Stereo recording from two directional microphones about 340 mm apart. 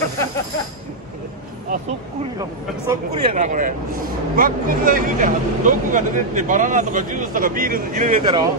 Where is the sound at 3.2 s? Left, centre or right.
Right.